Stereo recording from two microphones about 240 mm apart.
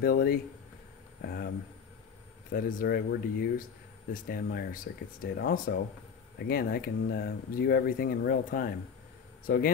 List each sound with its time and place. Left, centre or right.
0.0 s speech: left
2.5 s speech: left